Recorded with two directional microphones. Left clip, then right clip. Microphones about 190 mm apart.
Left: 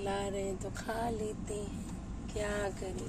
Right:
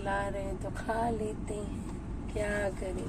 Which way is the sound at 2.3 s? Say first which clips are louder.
Right 3 dB; 20° left (ahead or behind).